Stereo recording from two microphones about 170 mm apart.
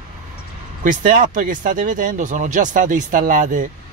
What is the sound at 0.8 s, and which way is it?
Speech, 50° right (ahead or behind).